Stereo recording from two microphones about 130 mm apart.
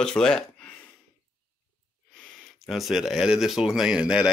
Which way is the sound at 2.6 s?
Centre (ahead or behind).